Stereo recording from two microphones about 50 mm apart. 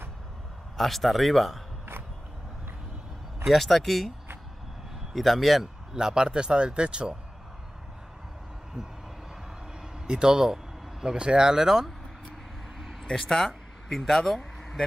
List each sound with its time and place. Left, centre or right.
0.7 s speech: centre
3.4 s speech: centre
5.1 s speech: centre
5.9 s speech: centre
10.0 s vehicle: centre
11.1 s speech: centre
13.0 s speech: centre